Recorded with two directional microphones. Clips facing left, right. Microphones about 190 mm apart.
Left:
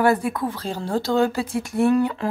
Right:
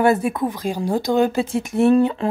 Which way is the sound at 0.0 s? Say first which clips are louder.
Right 2 dB; 20° right (ahead or behind).